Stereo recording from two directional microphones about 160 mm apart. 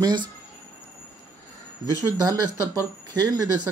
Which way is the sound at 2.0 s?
20° right (ahead or behind).